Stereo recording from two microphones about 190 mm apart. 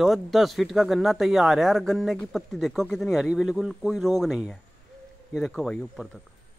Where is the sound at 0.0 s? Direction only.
Centre (ahead or behind).